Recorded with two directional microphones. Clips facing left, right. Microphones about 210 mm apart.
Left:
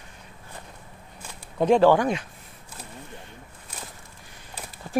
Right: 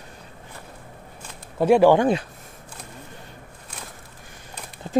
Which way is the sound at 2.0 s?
35° right (ahead or behind).